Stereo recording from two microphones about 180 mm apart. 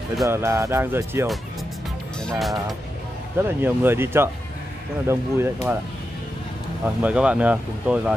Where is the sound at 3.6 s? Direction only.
10° right (ahead or behind).